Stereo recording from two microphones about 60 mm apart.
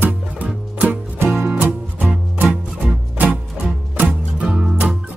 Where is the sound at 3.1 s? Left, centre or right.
Right.